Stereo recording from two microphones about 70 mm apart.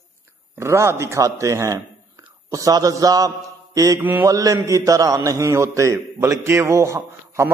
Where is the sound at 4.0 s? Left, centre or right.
Right.